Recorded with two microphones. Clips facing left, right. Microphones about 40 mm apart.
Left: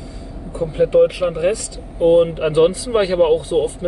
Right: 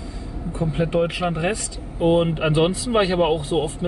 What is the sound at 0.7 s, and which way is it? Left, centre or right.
A man's voice, right.